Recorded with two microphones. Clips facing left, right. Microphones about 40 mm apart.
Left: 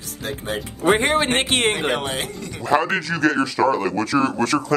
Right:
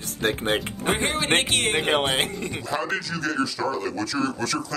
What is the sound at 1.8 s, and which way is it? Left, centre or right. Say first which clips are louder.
Speech: right 1 dB; right.